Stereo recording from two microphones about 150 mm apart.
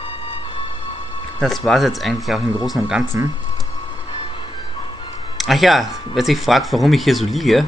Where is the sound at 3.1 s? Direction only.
15° right (ahead or behind).